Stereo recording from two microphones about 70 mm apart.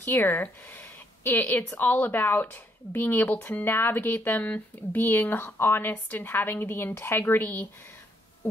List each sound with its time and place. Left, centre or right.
0.3 s a sound: left
1.3 s a woman's voice: left
1.7 s speech: left